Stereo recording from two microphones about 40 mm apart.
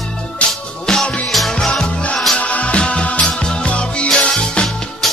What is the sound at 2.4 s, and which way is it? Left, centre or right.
Music, left.